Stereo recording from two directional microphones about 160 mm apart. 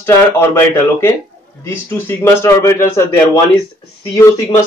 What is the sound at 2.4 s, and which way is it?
Speech, 15° left (ahead or behind).